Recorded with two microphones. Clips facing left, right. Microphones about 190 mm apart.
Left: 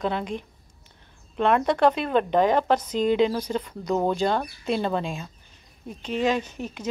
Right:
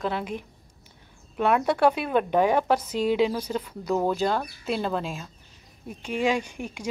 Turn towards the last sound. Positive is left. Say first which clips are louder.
# left 1 dB
turn(degrees=-10)  # may be behind; listen again after turning